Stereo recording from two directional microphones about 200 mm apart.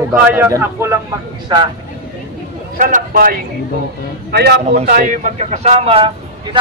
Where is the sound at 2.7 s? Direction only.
45° right (ahead or behind).